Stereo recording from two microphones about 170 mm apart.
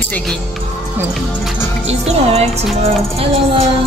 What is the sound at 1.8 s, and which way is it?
Speech, 40° right (ahead or behind).